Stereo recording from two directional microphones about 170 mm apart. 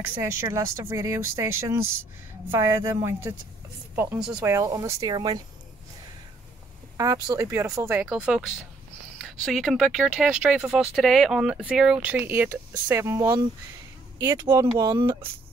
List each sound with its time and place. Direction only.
0.1 s speech: 15° right (ahead or behind)
4.5 s speech: 20° right (ahead or behind)
7.0 s speech: 20° right (ahead or behind)